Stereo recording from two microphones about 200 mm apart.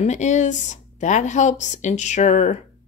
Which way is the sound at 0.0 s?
35° left (ahead or behind).